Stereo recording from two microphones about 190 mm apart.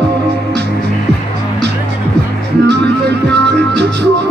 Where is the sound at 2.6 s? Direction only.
65° right (ahead or behind).